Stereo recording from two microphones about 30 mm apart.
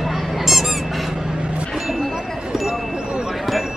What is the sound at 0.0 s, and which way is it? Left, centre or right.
Honk, centre.